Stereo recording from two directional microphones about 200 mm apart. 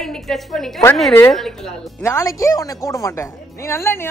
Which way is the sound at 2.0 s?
15° left (ahead or behind).